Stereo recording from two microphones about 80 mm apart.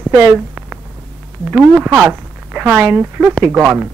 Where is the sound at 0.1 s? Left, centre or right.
Right.